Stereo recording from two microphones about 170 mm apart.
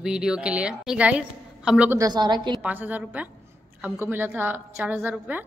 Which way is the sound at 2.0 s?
25° right (ahead or behind).